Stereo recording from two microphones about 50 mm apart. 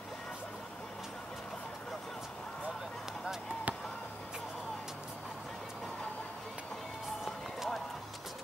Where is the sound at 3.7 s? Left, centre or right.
Right.